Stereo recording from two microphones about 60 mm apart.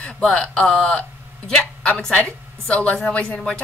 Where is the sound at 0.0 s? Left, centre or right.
Centre.